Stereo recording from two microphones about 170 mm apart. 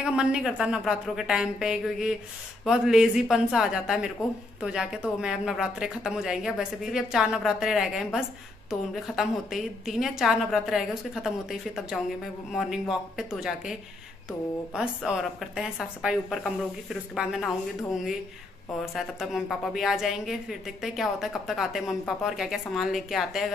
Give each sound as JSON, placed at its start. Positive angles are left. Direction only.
{"t": 0.0, "sound": "a woman's voice", "side_deg": -5}
{"t": 18.9, "sound": "a woman's voice", "side_deg": 0}